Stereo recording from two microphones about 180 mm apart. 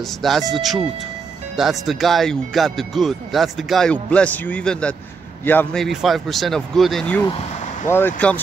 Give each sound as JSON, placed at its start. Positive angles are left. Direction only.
{"t": 0.2, "sound": "speech", "side_deg": 0}